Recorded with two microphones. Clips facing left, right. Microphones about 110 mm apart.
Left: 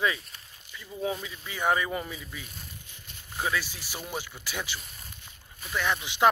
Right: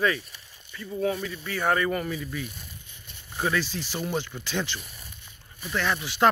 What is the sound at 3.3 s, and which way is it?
A man's voice, 5° left (ahead or behind).